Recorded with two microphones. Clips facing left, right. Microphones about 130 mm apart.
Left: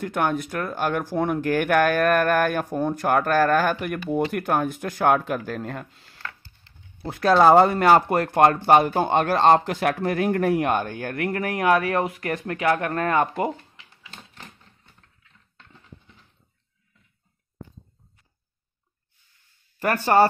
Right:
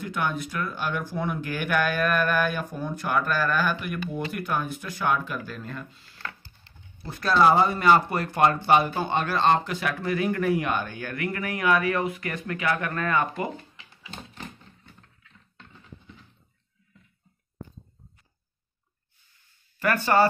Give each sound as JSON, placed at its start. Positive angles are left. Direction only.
{"t": 0.0, "sound": "speech", "side_deg": 55}
{"t": 7.1, "sound": "speech", "side_deg": 65}
{"t": 7.8, "sound": "speech", "side_deg": 55}
{"t": 19.8, "sound": "speech", "side_deg": 45}